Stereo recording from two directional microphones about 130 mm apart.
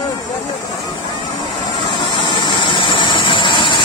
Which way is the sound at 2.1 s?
35° left (ahead or behind).